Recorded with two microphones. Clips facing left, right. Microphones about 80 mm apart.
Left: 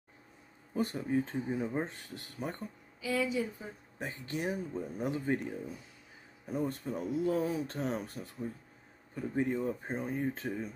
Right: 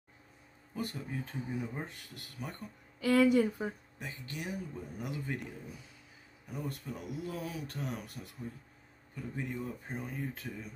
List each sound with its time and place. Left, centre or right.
0.7 s speech: left
3.0 s a woman's voice: right
4.0 s speech: left
6.4 s speech: left